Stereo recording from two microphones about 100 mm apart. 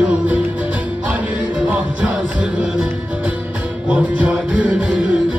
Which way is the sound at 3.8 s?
15° right (ahead or behind).